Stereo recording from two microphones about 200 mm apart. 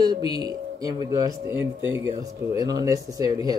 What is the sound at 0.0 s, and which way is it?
Speech, 20° right (ahead or behind).